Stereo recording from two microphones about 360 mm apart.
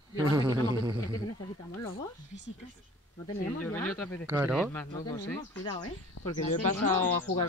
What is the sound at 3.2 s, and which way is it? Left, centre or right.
Speech, centre.